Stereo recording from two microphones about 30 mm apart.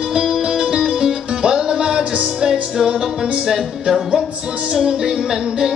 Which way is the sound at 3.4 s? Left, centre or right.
Centre.